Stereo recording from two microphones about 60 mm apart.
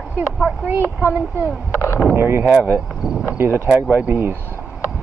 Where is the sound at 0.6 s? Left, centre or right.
Right.